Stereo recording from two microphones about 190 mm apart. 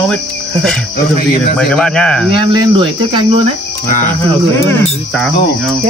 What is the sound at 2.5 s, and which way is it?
Cricket, 25° right (ahead or behind).